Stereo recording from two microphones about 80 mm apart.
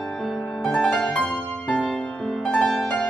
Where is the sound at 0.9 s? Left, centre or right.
Centre.